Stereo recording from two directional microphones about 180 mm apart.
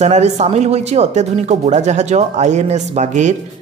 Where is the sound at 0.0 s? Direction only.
40° right (ahead or behind).